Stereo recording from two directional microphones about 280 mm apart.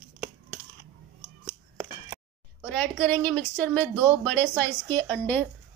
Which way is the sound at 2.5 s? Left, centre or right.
Centre.